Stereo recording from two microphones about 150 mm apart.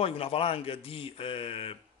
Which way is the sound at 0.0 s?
40° left (ahead or behind).